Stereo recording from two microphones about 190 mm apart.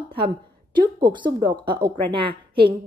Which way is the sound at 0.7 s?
25° right (ahead or behind).